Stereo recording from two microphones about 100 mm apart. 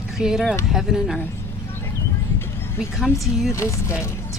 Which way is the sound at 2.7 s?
5° right (ahead or behind).